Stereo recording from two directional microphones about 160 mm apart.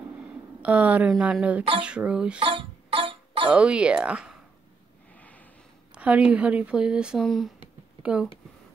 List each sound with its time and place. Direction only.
0.6 s a woman's voice: 10° right (ahead or behind)
2.4 s music: 35° right (ahead or behind)
3.5 s a woman's voice: 5° right (ahead or behind)
5.1 s a sound: 10° left (ahead or behind)
5.9 s speech: 10° right (ahead or behind)